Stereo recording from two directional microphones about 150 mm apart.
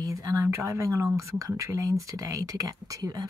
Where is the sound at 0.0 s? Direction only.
20° right (ahead or behind).